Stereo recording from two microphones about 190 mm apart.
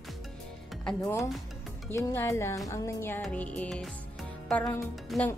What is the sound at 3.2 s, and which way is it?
Speech, 5° left (ahead or behind).